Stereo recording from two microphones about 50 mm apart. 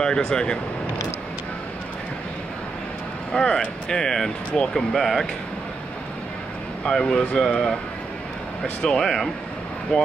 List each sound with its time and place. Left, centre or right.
0.0 s speech: centre
3.3 s speech: centre
6.8 s speech: centre
8.9 s speech: centre
9.9 s speech: centre